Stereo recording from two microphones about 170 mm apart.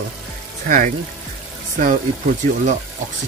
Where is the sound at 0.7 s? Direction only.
50° right (ahead or behind).